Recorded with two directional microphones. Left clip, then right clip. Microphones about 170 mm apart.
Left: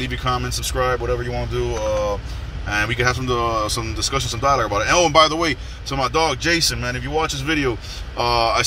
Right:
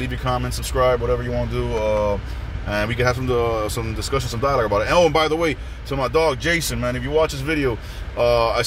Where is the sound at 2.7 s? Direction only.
25° right (ahead or behind).